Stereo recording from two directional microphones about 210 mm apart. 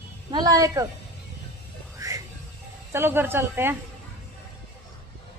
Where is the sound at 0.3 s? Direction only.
15° right (ahead or behind).